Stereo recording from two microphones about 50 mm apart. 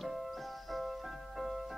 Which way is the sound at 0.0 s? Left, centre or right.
Centre.